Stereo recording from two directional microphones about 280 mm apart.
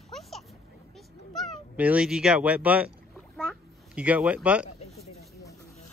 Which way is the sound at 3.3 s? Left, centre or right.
Centre.